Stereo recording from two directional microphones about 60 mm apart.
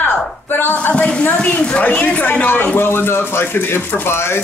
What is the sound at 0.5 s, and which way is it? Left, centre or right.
A woman's voice, left.